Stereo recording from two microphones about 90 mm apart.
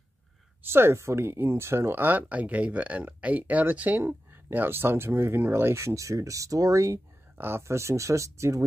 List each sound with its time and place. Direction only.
0.7 s speech: 25° right (ahead or behind)